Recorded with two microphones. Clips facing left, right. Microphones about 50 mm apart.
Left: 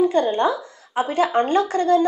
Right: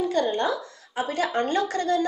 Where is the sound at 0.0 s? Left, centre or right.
Left.